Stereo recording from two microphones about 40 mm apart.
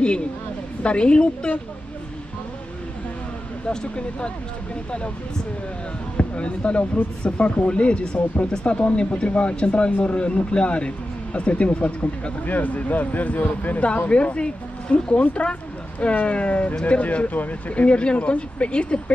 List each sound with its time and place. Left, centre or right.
0.8 s speech: left
3.6 s speech: left
6.1 s speech: left
14.0 s speech: left